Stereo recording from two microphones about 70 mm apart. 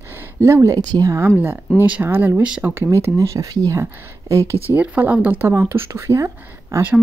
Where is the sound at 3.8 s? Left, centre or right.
Right.